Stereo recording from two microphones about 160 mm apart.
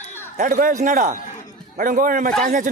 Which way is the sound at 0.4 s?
60° right (ahead or behind).